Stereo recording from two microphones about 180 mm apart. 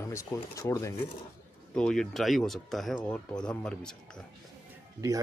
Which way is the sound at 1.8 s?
5° left (ahead or behind).